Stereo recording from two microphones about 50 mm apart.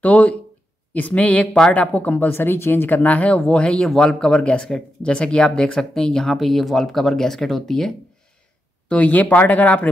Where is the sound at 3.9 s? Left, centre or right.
Centre.